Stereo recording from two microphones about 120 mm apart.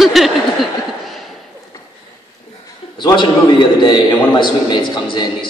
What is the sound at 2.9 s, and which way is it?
A man's voice, 40° left (ahead or behind).